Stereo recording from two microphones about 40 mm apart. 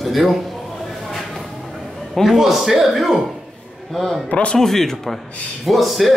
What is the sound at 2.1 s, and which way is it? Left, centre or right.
Speech, centre.